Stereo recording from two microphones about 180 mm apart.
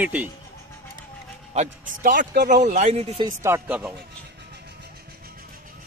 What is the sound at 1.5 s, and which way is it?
Speech, 50° right (ahead or behind).